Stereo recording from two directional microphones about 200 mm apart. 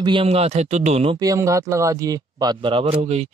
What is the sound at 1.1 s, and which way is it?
Speech, 15° right (ahead or behind).